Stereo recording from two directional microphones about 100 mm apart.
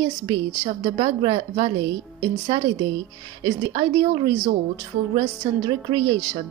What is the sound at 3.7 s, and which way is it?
Speech, 50° right (ahead or behind).